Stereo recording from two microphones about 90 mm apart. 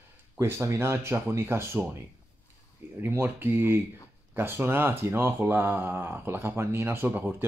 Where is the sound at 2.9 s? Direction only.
25° right (ahead or behind).